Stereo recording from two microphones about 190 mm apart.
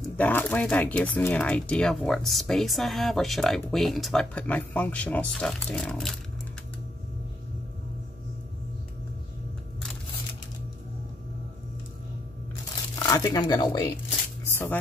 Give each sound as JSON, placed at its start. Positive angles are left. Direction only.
{"t": 0.2, "sound": "speech", "side_deg": 10}
{"t": 13.0, "sound": "speech", "side_deg": 20}
{"t": 14.5, "sound": "music", "side_deg": 15}